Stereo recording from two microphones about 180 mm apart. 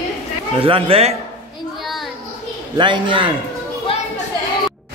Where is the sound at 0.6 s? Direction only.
30° right (ahead or behind).